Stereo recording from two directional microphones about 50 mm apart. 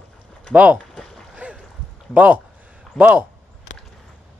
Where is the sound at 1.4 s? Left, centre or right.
Right.